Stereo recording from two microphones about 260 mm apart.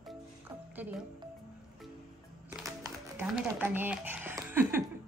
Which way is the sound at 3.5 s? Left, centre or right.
Centre.